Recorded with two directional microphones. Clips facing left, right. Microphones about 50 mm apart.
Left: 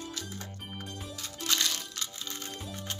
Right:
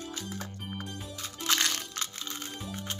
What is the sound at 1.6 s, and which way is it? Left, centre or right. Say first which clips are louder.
Crushing: right 2 dB; right.